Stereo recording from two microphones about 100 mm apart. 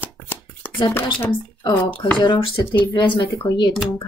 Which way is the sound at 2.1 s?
50° left (ahead or behind).